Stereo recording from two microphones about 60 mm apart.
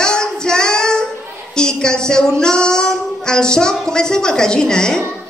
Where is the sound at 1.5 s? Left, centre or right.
Centre.